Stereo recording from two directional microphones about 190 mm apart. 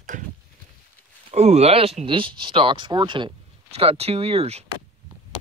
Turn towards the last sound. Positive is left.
turn(degrees=-30)  # may be behind; listen again after turning